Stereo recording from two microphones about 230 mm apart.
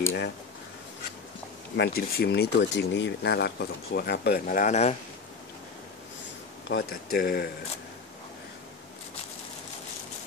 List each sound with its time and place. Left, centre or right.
0.0 s a sound: left
1.8 s speech: left
6.8 s speech: left